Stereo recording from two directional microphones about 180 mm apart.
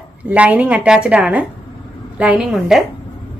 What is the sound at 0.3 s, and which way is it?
A woman's voice, 10° right (ahead or behind).